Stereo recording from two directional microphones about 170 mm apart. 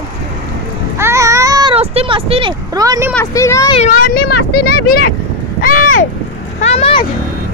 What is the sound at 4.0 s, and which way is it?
Speech, 60° left (ahead or behind).